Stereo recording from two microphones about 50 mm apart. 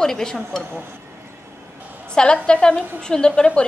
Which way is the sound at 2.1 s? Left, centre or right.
Centre.